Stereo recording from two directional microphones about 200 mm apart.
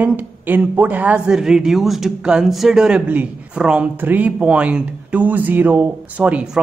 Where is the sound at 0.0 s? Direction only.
10° right (ahead or behind).